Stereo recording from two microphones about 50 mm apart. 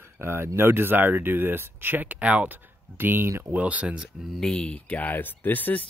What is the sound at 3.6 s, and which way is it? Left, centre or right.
Speech, right.